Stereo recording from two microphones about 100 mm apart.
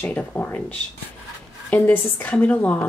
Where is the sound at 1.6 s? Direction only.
20° left (ahead or behind).